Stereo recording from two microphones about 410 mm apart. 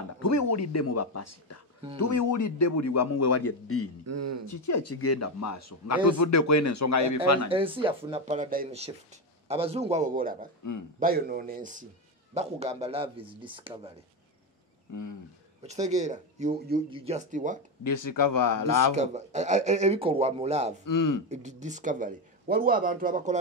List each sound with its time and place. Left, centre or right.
0.2 s a man's voice: left
4.0 s speech: right
4.5 s a man's voice: left
7.4 s speech: centre
14.9 s speech: left
15.6 s speech: centre
17.8 s speech: left
18.9 s speech: centre
20.8 s speech: left
21.3 s speech: centre